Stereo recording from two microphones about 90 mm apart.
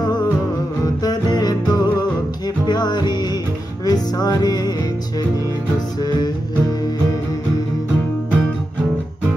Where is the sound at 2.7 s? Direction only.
50° left (ahead or behind).